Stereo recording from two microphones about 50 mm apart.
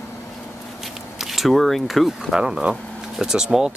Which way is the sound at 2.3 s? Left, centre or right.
Centre.